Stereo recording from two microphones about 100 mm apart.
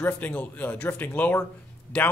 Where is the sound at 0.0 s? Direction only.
15° left (ahead or behind).